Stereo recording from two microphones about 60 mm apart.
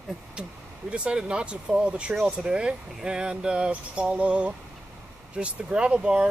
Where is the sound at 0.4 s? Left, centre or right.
Centre.